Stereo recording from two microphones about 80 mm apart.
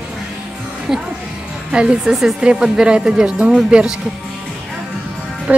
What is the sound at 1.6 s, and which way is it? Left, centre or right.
Speech, centre.